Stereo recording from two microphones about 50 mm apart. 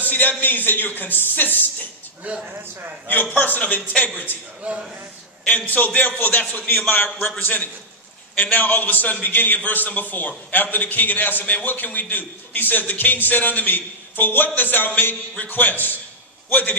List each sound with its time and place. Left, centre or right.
0.0 s a man's voice: left
2.2 s a man's voice: right
2.6 s a man's voice: right
3.1 s a man's voice: left
5.9 s a man's voice: left
6.4 s a man's voice: left
7.2 s a man's voice: left